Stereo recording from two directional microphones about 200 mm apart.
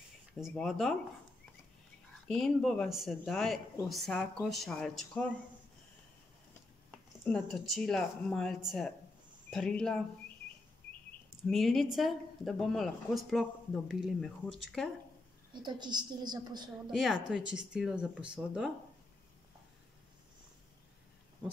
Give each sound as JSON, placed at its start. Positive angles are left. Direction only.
{"t": 0.3, "sound": "a woman's voice", "side_deg": 0}
{"t": 2.2, "sound": "a woman's voice", "side_deg": 5}
{"t": 7.2, "sound": "a woman's voice", "side_deg": 5}
{"t": 11.5, "sound": "a woman's voice", "side_deg": 0}
{"t": 15.5, "sound": "a woman's voice", "side_deg": -20}
{"t": 16.9, "sound": "a woman's voice", "side_deg": 0}